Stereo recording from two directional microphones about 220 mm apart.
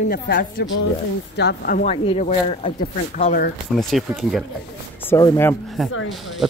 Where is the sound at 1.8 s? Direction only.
30° left (ahead or behind).